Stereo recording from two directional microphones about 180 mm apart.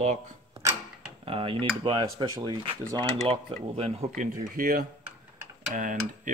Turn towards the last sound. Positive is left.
turn(degrees=-45)  # may be behind; listen again after turning